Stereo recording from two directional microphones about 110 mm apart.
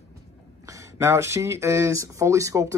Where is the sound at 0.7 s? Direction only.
25° right (ahead or behind).